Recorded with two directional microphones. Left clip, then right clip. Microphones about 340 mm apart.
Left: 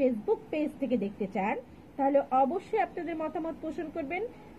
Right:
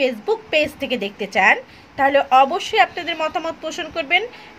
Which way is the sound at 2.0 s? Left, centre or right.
Centre.